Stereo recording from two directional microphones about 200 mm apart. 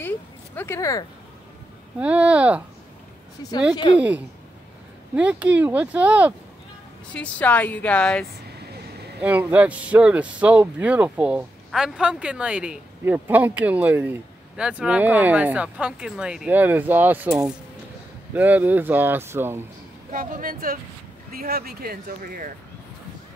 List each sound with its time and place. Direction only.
0.6 s a woman's voice: 15° left (ahead or behind)
2.0 s speech: 5° right (ahead or behind)
3.7 s speech: 25° left (ahead or behind)
5.1 s speech: 5° right (ahead or behind)
7.2 s a woman's voice: 5° left (ahead or behind)
9.2 s speech: 10° right (ahead or behind)
20.1 s speech: 40° right (ahead or behind)